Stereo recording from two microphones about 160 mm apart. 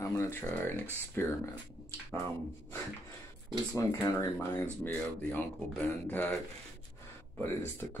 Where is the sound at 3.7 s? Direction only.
15° left (ahead or behind).